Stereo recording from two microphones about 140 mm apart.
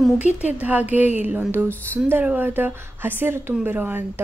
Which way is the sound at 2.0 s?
15° right (ahead or behind).